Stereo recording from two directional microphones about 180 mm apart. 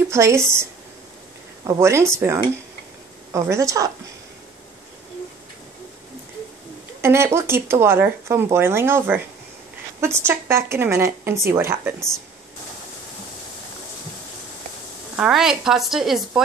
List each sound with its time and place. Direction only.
0.1 s speech: 15° right (ahead or behind)
1.7 s speech: 15° right (ahead or behind)
7.0 s speech: 15° right (ahead or behind)
15.1 s speech: 5° right (ahead or behind)